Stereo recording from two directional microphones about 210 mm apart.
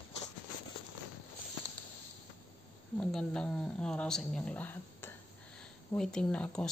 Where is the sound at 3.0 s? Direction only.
5° left (ahead or behind).